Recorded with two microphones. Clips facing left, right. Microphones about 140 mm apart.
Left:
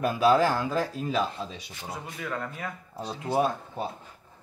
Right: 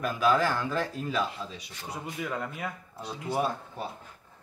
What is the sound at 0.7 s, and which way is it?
Speech, 15° left (ahead or behind).